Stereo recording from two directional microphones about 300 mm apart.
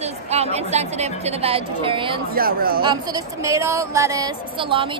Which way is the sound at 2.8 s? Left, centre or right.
Centre.